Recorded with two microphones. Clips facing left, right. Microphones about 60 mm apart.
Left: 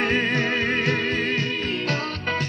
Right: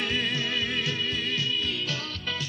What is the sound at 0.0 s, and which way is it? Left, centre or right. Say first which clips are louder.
Music: left 7 dB; left.